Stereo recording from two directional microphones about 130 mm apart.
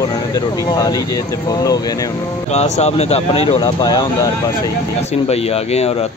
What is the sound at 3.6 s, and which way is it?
Speech, 35° left (ahead or behind).